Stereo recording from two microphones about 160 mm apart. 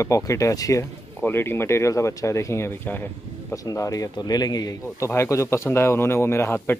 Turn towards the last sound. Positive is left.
turn(degrees=15)  # may be behind; listen again after turning